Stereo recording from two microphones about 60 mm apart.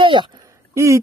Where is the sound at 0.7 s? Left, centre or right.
Right.